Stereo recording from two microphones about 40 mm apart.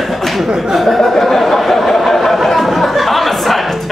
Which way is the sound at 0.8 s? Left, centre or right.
Centre.